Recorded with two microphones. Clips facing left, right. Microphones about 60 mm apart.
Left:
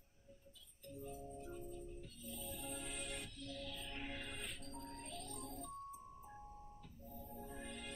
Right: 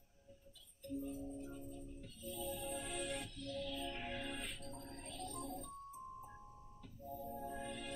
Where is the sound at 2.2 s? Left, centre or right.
Right.